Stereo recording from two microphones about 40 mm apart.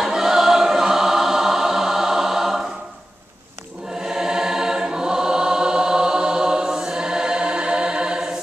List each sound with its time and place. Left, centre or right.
0.0 s choir: centre
4.0 s choir: centre